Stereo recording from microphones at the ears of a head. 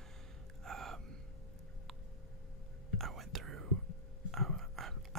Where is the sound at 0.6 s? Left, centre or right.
Right.